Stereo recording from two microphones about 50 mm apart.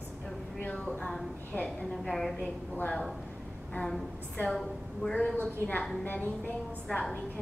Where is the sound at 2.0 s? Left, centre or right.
Centre.